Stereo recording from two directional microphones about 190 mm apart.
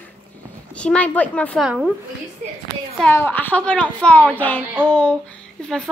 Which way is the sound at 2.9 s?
10° left (ahead or behind).